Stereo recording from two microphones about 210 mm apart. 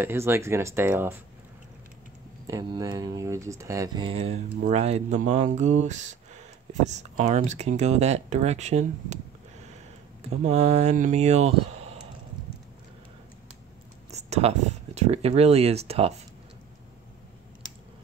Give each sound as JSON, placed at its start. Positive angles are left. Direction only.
{"t": 0.0, "sound": "speech", "side_deg": -10}
{"t": 2.4, "sound": "speech", "side_deg": -15}
{"t": 14.1, "sound": "a sound", "side_deg": -30}
{"t": 15.0, "sound": "speech", "side_deg": -30}